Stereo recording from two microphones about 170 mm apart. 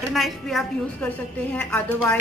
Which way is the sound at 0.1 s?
Centre (ahead or behind).